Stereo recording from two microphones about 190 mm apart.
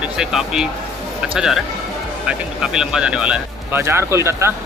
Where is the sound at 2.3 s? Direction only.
5° right (ahead or behind).